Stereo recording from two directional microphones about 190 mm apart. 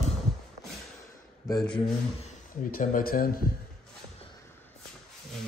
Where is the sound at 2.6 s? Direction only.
45° left (ahead or behind).